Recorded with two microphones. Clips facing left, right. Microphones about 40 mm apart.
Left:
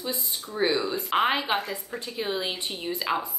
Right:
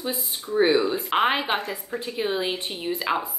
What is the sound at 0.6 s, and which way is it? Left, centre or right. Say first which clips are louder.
Speech: right 5 dB; centre.